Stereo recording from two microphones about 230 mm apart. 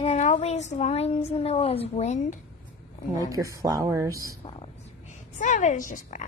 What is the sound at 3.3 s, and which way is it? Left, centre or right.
Speech, centre.